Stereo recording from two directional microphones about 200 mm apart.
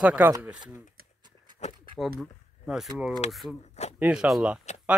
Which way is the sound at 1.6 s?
35° left (ahead or behind).